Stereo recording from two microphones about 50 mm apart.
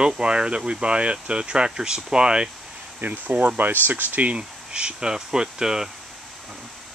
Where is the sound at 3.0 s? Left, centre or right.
Right.